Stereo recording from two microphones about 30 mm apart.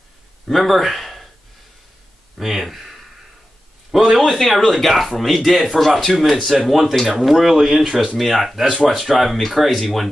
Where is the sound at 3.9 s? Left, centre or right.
Centre.